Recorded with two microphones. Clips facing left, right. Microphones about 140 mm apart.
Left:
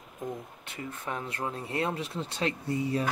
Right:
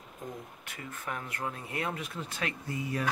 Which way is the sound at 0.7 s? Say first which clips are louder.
Left 3 dB; 25° left (ahead or behind).